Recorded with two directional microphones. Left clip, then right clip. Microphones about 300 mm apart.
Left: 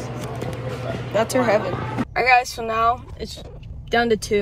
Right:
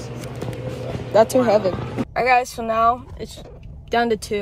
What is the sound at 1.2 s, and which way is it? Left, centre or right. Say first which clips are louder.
Speech: even; centre.